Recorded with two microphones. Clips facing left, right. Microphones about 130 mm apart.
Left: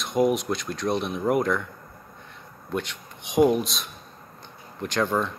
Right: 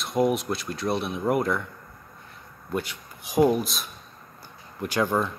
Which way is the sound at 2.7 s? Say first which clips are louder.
Even; 5° right (ahead or behind).